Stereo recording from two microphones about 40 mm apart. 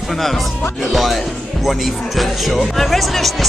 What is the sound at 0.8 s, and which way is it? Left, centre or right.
Speech, centre.